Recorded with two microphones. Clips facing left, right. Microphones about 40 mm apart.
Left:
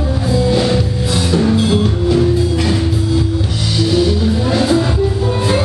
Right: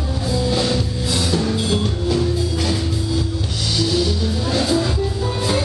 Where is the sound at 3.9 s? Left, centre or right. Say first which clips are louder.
Left 9 dB; centre.